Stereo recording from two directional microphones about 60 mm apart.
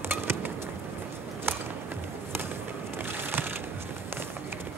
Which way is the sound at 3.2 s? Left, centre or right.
Right.